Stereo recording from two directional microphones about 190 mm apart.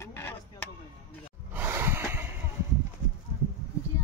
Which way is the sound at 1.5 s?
10° right (ahead or behind).